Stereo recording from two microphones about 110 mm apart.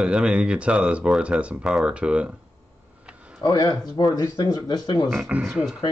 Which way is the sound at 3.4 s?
35° left (ahead or behind).